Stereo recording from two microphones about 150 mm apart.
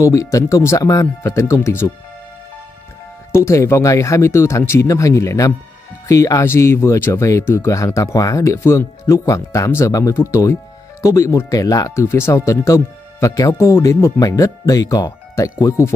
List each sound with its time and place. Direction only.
0.0 s speech: 20° left (ahead or behind)
3.3 s speech: 20° left (ahead or behind)